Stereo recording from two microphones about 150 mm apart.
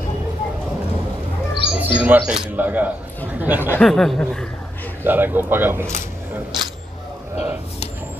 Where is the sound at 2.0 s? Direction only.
10° right (ahead or behind).